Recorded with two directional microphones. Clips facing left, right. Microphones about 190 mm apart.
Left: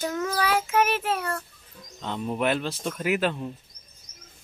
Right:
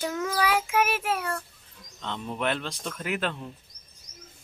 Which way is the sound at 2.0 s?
10° left (ahead or behind).